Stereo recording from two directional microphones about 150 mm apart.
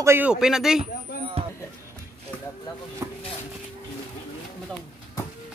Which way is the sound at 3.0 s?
20° right (ahead or behind).